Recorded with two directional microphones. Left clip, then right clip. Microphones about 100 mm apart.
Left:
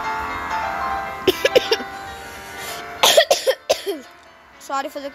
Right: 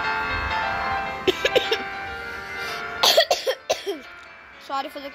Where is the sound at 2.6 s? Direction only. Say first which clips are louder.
Even; 20° right (ahead or behind).